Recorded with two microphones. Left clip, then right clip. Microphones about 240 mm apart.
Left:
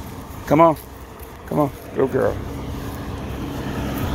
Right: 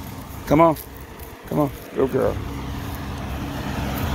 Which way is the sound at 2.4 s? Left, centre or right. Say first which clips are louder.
Left 1 dB; centre.